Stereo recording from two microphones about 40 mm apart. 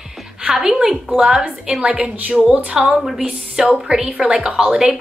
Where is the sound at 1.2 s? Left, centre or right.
Right.